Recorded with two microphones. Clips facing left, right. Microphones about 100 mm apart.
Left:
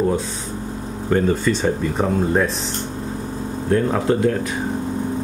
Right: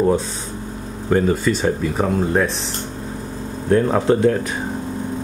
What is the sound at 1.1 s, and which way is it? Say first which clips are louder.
Speech: right 1 dB; 10° right (ahead or behind).